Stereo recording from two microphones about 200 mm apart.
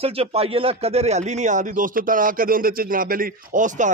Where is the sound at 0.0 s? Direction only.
30° right (ahead or behind).